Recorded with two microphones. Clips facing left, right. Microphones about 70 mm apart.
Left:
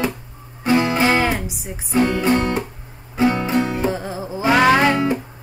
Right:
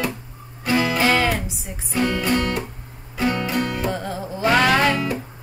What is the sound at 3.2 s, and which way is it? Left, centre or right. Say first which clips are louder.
Music: left 4 dB; left.